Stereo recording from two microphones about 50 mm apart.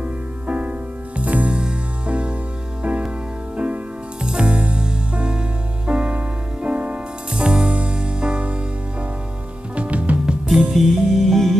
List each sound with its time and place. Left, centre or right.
0.0 s music: right
9.8 s music: right
10.7 s music: centre